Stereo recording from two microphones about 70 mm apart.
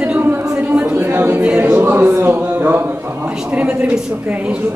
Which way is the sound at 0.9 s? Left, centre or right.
Right.